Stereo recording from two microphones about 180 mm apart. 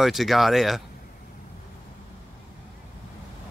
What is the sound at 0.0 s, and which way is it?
Speech, centre (ahead or behind).